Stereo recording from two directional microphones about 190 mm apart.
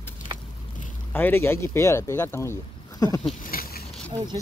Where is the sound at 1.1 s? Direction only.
10° left (ahead or behind).